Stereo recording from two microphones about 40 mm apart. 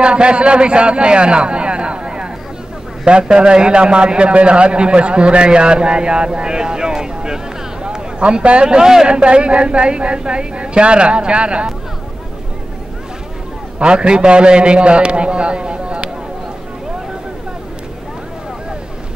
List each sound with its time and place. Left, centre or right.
0.0 s a man's voice: right
13.7 s a man's voice: right